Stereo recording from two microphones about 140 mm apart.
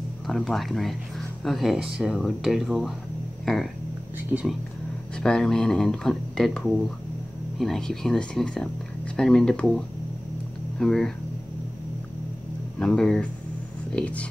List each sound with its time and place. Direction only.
0.3 s speech: centre (ahead or behind)
4.3 s speech: 10° right (ahead or behind)
5.2 s speech: 5° left (ahead or behind)
12.7 s speech: 5° left (ahead or behind)